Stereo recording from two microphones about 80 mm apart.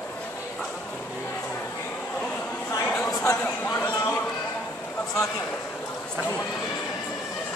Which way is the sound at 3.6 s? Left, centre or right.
Left.